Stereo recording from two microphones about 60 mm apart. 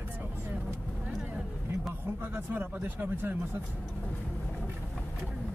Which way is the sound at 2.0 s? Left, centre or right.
Right.